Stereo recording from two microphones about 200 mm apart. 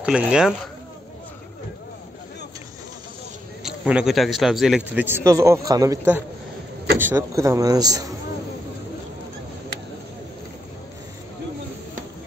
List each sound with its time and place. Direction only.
0.0 s speech: 5° right (ahead or behind)
3.6 s a man's voice: 5° right (ahead or behind)